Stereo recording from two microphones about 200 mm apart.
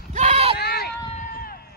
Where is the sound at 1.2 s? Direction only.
45° left (ahead or behind).